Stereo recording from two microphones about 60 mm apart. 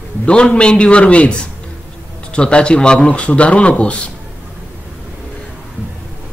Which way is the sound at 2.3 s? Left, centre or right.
Centre.